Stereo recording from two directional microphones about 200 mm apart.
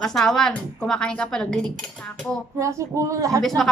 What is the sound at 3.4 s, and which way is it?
Speech, centre (ahead or behind).